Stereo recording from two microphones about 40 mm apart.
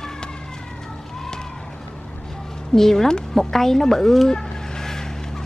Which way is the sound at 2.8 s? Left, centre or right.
Centre.